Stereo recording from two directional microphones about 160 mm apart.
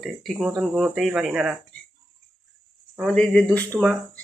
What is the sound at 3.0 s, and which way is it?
Speech, 5° left (ahead or behind).